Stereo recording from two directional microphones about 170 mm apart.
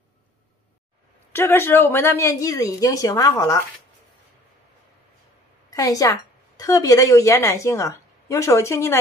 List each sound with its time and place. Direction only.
1.3 s speech: 15° left (ahead or behind)
5.7 s a woman's voice: 20° left (ahead or behind)